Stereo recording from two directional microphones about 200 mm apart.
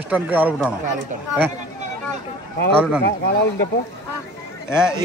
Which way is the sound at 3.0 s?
50° left (ahead or behind).